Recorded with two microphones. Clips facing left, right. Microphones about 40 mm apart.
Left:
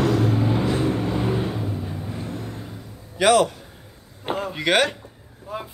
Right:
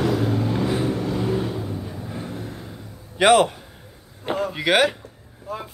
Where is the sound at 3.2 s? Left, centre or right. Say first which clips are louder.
Right 2 dB; right.